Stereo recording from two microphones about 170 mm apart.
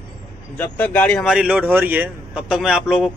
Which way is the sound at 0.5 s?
10° left (ahead or behind).